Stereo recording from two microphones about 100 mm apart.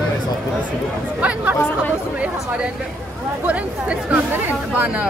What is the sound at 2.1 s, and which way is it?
Speech, 10° right (ahead or behind).